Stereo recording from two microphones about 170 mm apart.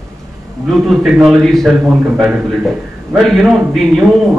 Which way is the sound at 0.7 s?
Centre (ahead or behind).